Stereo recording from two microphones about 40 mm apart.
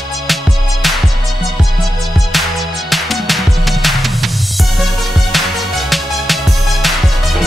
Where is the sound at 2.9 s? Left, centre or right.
Centre.